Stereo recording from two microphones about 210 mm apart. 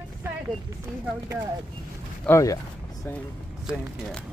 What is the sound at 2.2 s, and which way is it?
Speech, 15° left (ahead or behind).